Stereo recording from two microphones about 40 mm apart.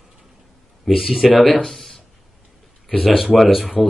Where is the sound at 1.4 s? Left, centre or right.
Centre.